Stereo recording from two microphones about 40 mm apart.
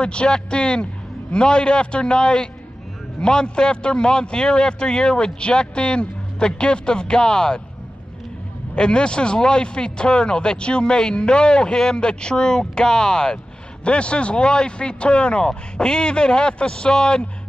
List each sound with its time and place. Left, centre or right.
0.0 s speech: left
8.7 s speech: left